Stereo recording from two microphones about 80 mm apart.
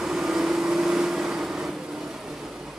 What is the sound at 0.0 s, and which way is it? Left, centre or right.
Vehicle, centre.